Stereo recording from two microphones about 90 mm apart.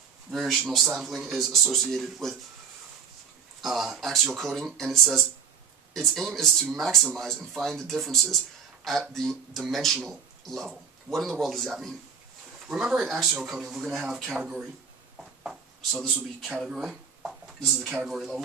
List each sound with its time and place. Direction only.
0.3 s speech: centre (ahead or behind)
3.6 s speech: centre (ahead or behind)
15.1 s a sound: 5° right (ahead or behind)
16.5 s speech: 5° right (ahead or behind)